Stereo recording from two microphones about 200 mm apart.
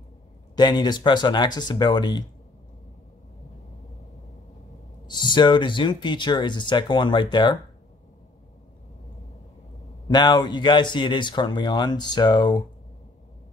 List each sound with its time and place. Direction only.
0.6 s speech: 20° left (ahead or behind)
5.0 s speech: 20° left (ahead or behind)
10.0 s speech: 20° left (ahead or behind)